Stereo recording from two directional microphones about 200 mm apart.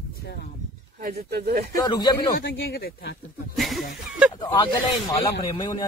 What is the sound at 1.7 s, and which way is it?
Speech, 20° left (ahead or behind).